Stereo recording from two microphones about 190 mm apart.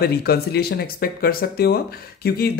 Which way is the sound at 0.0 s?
55° left (ahead or behind).